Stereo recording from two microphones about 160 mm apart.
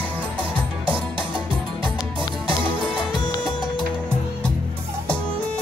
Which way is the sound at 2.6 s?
5° right (ahead or behind).